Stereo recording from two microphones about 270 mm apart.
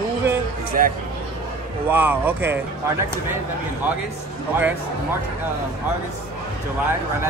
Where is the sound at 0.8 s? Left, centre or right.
Right.